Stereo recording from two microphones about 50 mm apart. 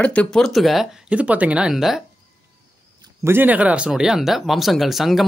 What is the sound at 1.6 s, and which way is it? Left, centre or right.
Speech, centre.